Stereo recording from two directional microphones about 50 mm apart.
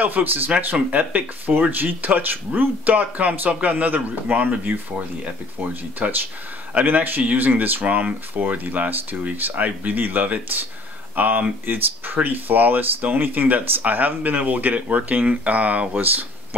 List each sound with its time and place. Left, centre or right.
0.0 s speech: right